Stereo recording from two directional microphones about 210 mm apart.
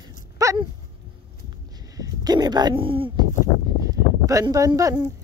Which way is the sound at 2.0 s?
20° right (ahead or behind).